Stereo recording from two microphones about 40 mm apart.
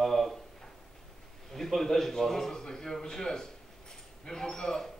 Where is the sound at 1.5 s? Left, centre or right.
Centre.